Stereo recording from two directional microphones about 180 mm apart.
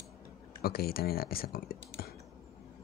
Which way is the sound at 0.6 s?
60° left (ahead or behind).